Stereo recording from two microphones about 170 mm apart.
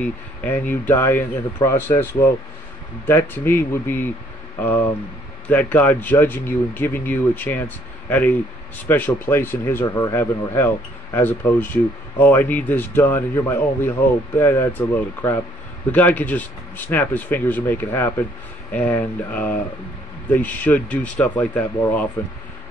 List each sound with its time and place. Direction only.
0.0 s speech: 10° left (ahead or behind)
3.1 s speech: 15° left (ahead or behind)